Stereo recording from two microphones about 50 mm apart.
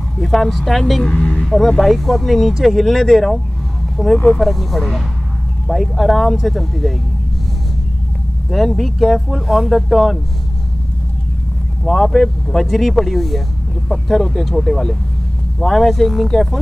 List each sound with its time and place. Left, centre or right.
0.2 s speech: centre
1.1 s a sound: left
1.4 s a sound: centre
1.9 s speech: centre
4.4 s speech: centre
8.5 s speech: centre
11.8 s speech: centre